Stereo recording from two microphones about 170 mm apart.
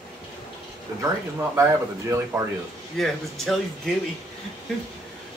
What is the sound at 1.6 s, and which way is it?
Speech, 15° right (ahead or behind).